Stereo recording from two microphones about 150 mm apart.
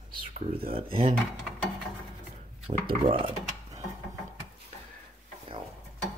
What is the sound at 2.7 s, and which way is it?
Speech, 35° right (ahead or behind).